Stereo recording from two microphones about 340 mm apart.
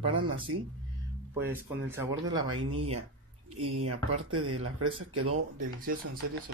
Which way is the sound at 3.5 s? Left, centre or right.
Right.